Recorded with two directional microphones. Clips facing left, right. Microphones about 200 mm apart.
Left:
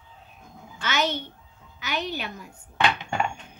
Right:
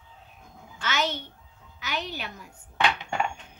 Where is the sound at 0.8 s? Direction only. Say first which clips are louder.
Left 2 dB; 20° left (ahead or behind).